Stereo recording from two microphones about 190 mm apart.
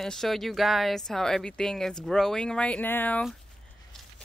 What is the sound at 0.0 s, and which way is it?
Speech, centre (ahead or behind).